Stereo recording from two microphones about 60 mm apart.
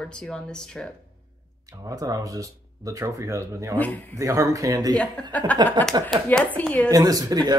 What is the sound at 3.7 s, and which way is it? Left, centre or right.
Speech, left.